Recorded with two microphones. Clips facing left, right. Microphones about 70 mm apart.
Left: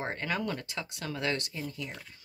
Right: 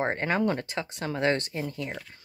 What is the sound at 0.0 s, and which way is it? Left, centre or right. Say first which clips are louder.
Speech: right 7 dB; right.